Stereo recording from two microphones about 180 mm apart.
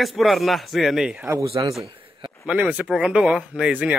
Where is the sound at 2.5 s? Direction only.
10° right (ahead or behind).